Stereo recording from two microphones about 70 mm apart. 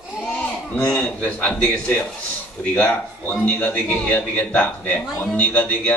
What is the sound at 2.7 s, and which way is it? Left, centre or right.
A man's voice, left.